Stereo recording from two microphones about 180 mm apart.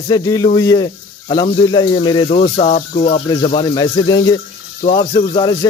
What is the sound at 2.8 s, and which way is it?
Speech, 40° left (ahead or behind).